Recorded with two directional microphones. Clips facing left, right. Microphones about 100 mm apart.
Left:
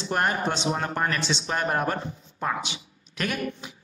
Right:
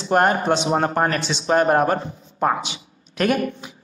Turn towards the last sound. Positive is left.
turn(degrees=-45)  # may be behind; listen again after turning